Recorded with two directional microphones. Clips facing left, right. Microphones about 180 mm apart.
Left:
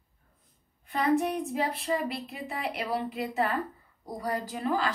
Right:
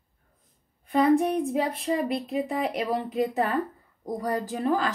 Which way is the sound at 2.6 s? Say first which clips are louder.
Right 4 dB; 45° right (ahead or behind).